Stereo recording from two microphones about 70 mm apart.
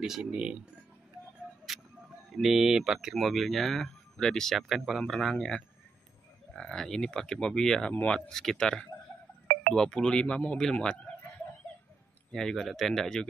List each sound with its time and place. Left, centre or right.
0.0 s speech: centre
1.7 s music: centre
2.3 s speech: centre
7.9 s speech: centre
8.3 s speech: centre
12.3 s speech: centre